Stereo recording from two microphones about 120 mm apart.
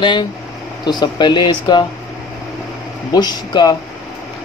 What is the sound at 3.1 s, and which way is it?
Speech, 35° left (ahead or behind).